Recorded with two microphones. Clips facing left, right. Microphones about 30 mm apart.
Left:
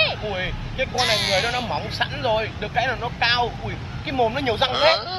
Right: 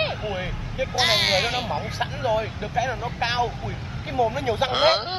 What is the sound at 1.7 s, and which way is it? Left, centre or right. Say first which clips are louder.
Speech: left 2 dB; left.